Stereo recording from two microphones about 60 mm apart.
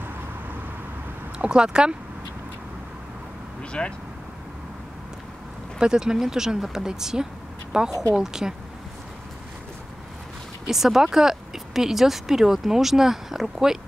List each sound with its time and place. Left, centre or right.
1.4 s speech: centre
3.8 s speech: centre
5.8 s speech: centre
10.7 s speech: centre